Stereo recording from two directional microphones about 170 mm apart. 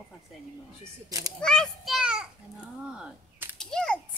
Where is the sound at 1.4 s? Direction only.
5° left (ahead or behind).